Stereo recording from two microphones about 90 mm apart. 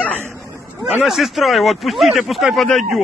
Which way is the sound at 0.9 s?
5° right (ahead or behind).